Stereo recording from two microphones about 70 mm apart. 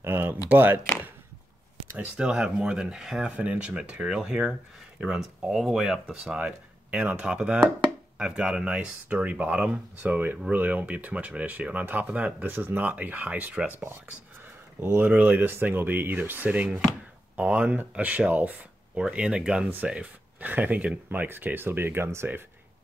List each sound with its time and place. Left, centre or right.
0.0 s speech: right
2.0 s speech: centre
6.3 s speech: centre
15.0 s speech: right
18.9 s speech: centre; by 22.4 s right